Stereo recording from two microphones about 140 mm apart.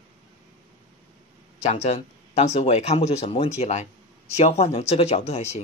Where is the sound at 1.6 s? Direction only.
55° left (ahead or behind).